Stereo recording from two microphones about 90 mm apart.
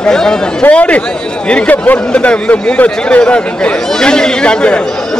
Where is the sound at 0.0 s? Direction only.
10° left (ahead or behind).